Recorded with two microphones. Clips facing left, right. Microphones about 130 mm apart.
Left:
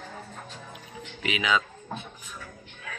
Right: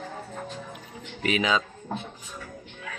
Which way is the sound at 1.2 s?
40° right (ahead or behind).